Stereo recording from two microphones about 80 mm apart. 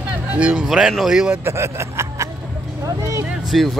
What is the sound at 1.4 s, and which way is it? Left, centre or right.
Music, right.